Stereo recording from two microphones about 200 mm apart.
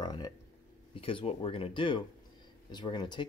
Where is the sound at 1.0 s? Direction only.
25° left (ahead or behind).